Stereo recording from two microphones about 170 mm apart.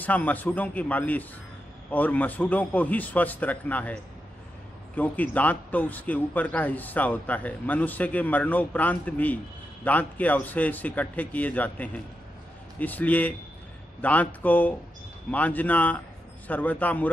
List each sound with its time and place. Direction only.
0.0 s a man's voice: 10° left (ahead or behind)